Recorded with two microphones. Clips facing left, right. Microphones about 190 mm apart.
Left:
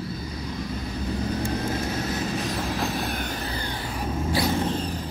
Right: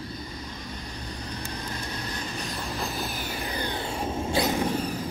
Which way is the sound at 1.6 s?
90° left.